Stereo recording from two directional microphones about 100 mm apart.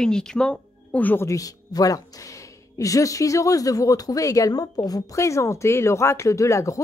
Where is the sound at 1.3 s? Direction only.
35° left (ahead or behind).